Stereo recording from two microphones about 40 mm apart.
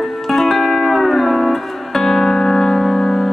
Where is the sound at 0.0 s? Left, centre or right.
Centre.